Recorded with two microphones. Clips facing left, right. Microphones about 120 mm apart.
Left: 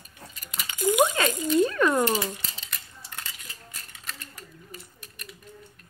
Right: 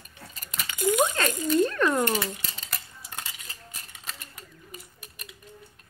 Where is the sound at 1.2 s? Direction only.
10° left (ahead or behind).